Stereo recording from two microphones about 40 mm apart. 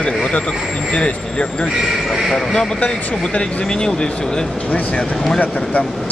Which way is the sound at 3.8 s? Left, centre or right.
Centre.